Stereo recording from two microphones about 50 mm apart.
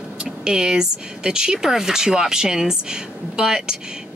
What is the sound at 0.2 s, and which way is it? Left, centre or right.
A woman's voice, centre.